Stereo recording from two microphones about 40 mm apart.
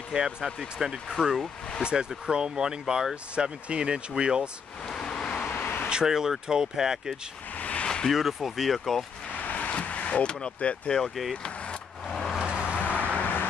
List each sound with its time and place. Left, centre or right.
0.1 s speech: centre
1.8 s speech: right
3.3 s speech: right
4.8 s vehicle: centre
5.4 s vehicle: left
6.0 s speech: centre
7.5 s a sound: left
7.8 s a sound: centre
8.1 s speech: centre
9.5 s vehicle: left
12.1 s vehicle: centre
12.4 s vehicle: right
13.0 s vehicle: left